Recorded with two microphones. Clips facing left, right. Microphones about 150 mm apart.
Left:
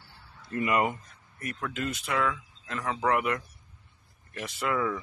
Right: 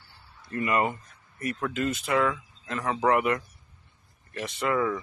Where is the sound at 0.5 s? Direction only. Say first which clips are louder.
Even; 15° left (ahead or behind).